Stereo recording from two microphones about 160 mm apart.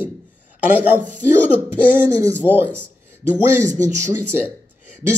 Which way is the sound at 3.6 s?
50° right (ahead or behind).